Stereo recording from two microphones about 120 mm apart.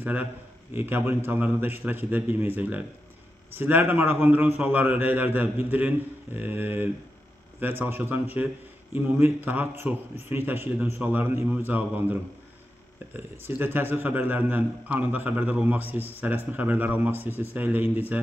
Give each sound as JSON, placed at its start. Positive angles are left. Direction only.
{"t": 0.0, "sound": "a man's voice", "side_deg": -10}